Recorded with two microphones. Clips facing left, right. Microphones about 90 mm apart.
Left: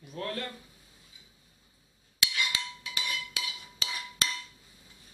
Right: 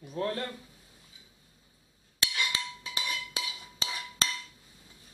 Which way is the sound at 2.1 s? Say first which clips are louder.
Even; 35° right (ahead or behind).